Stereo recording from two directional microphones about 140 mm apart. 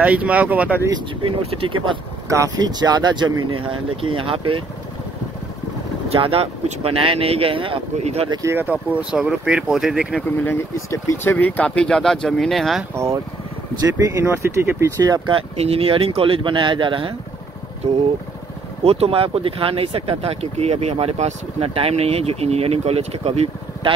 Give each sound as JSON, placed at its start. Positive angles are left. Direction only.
{"t": 0.0, "sound": "speech", "side_deg": -10}
{"t": 1.2, "sound": "speech", "side_deg": -40}
{"t": 2.2, "sound": "speech", "side_deg": -25}
{"t": 6.0, "sound": "speech", "side_deg": -40}
{"t": 7.9, "sound": "speech", "side_deg": -50}
{"t": 8.3, "sound": "speech", "side_deg": -20}
{"t": 10.2, "sound": "speech", "side_deg": 15}
{"t": 12.9, "sound": "speech", "side_deg": -20}
{"t": 15.3, "sound": "speech", "side_deg": -45}
{"t": 18.9, "sound": "speech", "side_deg": -45}